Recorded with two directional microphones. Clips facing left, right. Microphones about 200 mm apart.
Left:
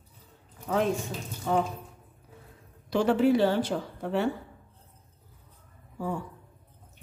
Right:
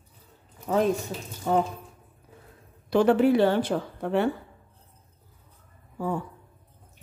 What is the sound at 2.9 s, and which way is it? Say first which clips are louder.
A woman's voice: right 3 dB; 55° right (ahead or behind).